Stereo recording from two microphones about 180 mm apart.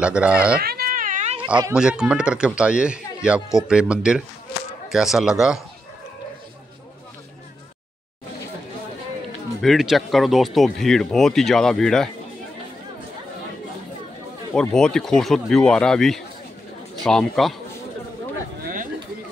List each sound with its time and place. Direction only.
0.0 s speech: 5° right (ahead or behind)
0.6 s cat: 60° right (ahead or behind); by 1.4 s 40° right (ahead or behind)
1.7 s speech: 5° right (ahead or behind)
9.6 s speech: centre (ahead or behind)
14.5 s speech: 5° left (ahead or behind)